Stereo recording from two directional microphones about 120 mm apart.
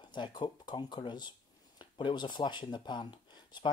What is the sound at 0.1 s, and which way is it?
Speech, 40° left (ahead or behind).